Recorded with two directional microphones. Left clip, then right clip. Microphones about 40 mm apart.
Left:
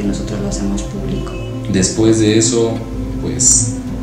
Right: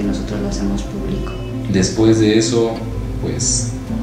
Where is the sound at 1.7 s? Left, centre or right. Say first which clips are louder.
Left 1 dB; left.